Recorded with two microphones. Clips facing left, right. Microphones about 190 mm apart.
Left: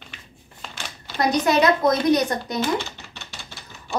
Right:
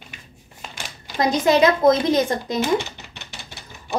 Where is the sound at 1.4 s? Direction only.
25° right (ahead or behind).